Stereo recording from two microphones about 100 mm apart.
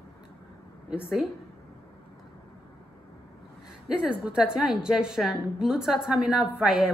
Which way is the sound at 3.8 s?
10° right (ahead or behind).